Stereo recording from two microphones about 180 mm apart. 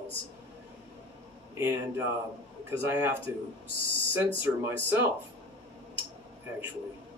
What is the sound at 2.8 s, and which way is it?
Speech, 10° right (ahead or behind).